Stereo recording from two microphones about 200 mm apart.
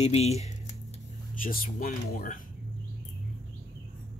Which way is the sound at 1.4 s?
45° left (ahead or behind).